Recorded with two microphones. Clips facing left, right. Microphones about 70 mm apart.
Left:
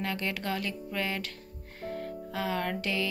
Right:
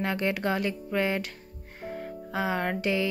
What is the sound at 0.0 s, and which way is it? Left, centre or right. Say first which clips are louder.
Music: right 5 dB; right.